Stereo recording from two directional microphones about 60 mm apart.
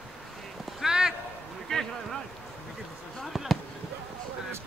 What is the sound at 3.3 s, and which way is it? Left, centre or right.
Basketball bounce, centre.